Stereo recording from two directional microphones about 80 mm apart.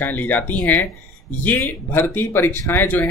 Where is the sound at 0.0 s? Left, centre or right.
Left.